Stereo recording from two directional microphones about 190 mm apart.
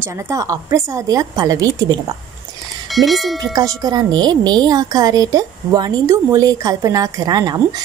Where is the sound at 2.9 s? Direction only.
Centre (ahead or behind).